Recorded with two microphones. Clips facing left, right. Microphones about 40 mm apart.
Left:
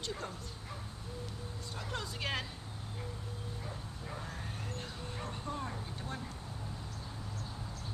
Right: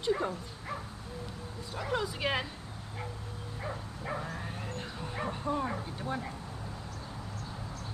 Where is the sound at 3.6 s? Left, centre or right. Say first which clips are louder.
Right 6 dB; right.